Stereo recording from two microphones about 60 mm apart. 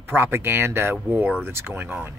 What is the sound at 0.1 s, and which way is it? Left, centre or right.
Speech, right.